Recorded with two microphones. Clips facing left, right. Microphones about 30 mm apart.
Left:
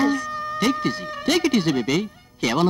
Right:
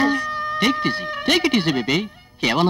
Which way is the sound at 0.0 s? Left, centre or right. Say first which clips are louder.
Right 2 dB; right.